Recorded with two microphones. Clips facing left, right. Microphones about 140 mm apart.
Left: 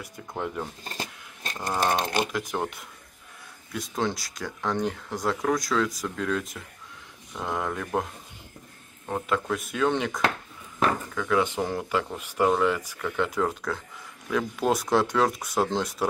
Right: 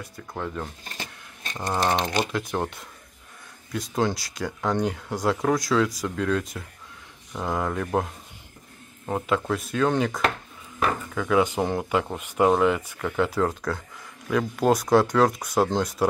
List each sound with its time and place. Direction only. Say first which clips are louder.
0.8 s a sound: left 2 dB; 40° left (ahead or behind)
1.6 s speech: right 2 dB; 20° right (ahead or behind)
2.5 s speech: right 2 dB; 5° left (ahead or behind)
11.4 s speech: right 3 dB; 35° right (ahead or behind)
11.7 s speech: right 3 dB; 5° right (ahead or behind)